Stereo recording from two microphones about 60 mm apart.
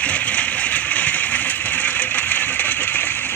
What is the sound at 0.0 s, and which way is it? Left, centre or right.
Vehicle, left.